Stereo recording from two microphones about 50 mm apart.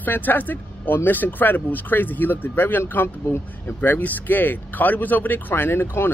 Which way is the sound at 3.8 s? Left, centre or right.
Left.